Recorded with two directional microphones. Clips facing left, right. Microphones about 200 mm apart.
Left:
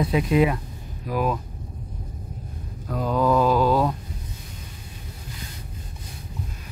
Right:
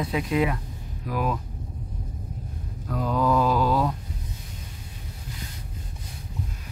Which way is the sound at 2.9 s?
20° left (ahead or behind).